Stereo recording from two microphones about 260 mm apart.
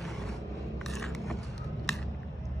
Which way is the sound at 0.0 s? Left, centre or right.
Centre.